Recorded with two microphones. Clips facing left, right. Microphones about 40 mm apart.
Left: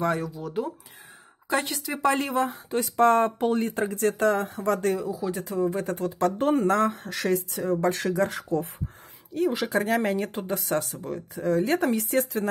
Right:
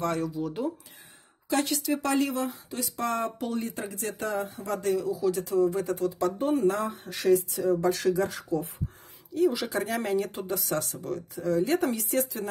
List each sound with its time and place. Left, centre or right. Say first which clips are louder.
0.0 s speech: left 2 dB; centre
1.5 s speech: even; left
2.0 s speech: left 6 dB; left
4.9 s speech: right 2 dB; centre
5.8 s speech: left 1 dB; left
11.3 s speech: left 2 dB; left